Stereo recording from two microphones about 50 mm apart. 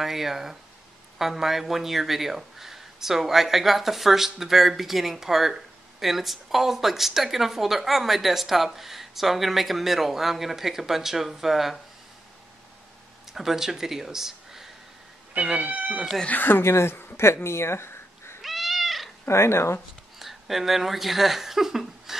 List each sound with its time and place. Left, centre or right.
0.0 s speech: centre
13.3 s speech: centre
15.6 s speech: right
16.3 s speech: left
16.6 s speech: left
18.4 s cat: centre
19.2 s speech: left
20.2 s a sound: centre